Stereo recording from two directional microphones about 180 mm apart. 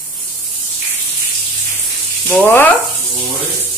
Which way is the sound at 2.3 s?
10° left (ahead or behind).